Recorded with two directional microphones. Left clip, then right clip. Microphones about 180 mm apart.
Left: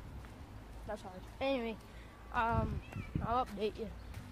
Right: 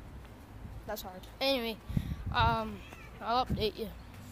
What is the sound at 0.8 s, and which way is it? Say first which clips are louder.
A woman's voice: right 4 dB; 10° right (ahead or behind).